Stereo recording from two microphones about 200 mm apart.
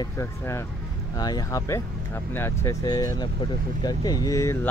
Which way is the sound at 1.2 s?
15° left (ahead or behind).